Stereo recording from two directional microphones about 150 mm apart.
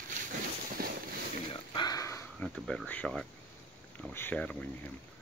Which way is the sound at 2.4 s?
5° left (ahead or behind).